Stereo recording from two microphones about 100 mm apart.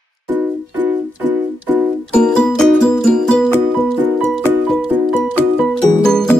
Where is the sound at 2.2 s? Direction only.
5° left (ahead or behind).